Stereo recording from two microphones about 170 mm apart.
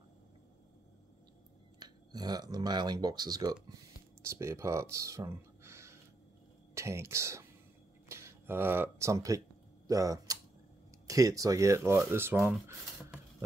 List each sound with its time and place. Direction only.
1.8 s speech: 25° right (ahead or behind)